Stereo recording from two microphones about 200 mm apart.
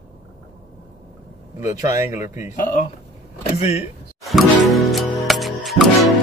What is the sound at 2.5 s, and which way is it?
Speech, 40° left (ahead or behind).